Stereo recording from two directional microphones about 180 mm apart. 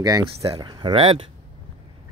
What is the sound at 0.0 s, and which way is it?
Speech, 20° right (ahead or behind).